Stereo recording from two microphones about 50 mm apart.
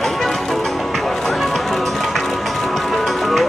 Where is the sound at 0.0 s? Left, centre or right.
Centre.